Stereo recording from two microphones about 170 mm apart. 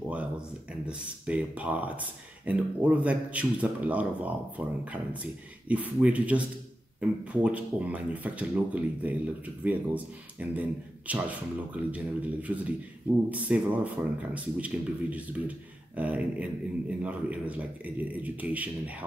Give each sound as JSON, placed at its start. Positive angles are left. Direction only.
{"t": 0.8, "sound": "speech", "side_deg": -5}